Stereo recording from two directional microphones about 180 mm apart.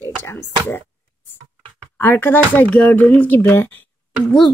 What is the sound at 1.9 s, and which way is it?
Speech, 10° left (ahead or behind).